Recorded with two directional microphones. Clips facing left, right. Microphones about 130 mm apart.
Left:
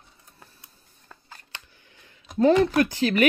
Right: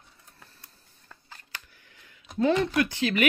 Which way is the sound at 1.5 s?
25° left (ahead or behind).